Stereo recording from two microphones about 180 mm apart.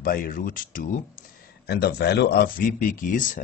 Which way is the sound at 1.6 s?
65° left (ahead or behind).